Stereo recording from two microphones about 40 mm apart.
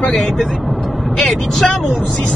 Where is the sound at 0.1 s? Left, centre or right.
Centre.